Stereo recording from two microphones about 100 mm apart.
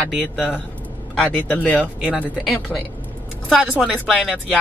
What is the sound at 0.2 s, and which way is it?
Speech, 10° left (ahead or behind).